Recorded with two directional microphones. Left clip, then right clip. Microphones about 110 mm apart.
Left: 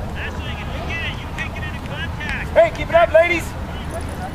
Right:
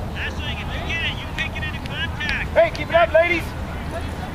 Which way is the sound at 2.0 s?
25° right (ahead or behind).